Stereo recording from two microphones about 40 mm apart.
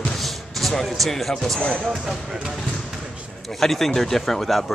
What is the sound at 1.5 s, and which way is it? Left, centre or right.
Speech, left.